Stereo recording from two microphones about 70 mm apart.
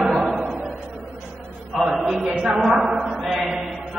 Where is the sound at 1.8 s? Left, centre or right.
Centre.